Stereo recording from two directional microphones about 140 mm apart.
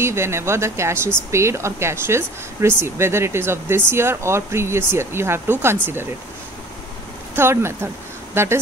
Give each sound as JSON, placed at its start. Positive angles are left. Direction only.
{"t": 0.0, "sound": "speech", "side_deg": -20}
{"t": 7.3, "sound": "speech", "side_deg": -20}